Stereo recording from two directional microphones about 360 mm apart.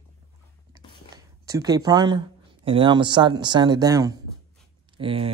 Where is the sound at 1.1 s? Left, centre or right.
Centre.